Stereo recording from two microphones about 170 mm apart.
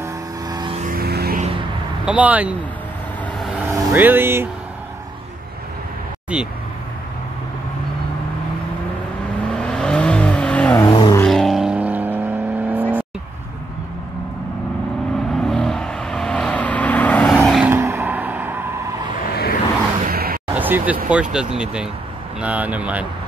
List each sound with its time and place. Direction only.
0.0 s vehicle: 25° right (ahead or behind)
0.7 s vehicle: 55° right (ahead or behind)
2.0 s speech: 10° right (ahead or behind)
3.6 s speech: 10° right (ahead or behind)
6.3 s speech: 5° right (ahead or behind)
9.6 s vehicle: 5° left (ahead or behind)
10.9 s vehicle: 30° left (ahead or behind)
11.2 s vehicle: centre (ahead or behind)
15.3 s vehicle: 5° left (ahead or behind)
17.6 s vehicle: 15° right (ahead or behind)
19.2 s vehicle: 65° left (ahead or behind)
20.1 s a sound: 60° right (ahead or behind)
20.5 s a sound: 10° right (ahead or behind)
21.1 s speech: 5° right (ahead or behind)